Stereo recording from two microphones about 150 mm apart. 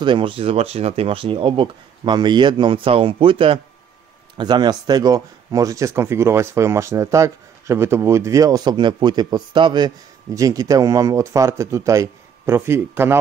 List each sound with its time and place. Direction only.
0.0 s speech: 35° right (ahead or behind); by 13.2 s 15° right (ahead or behind)